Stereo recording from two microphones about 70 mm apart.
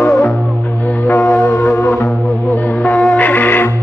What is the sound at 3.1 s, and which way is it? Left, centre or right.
Music, left.